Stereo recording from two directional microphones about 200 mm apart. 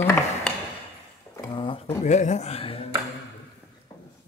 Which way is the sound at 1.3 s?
20° left (ahead or behind).